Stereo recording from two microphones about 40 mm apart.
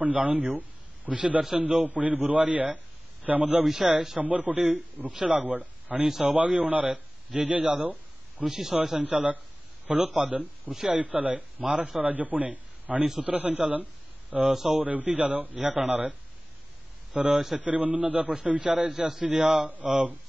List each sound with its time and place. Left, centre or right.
0.0 s speech: right
1.1 s a man's voice: right
1.6 s a man's voice: right
3.6 s a man's voice: centre
4.2 s a man's voice: right
8.7 s a man's voice: right
9.0 s a man's voice: right
14.3 s a man's voice: centre
14.7 s a man's voice: right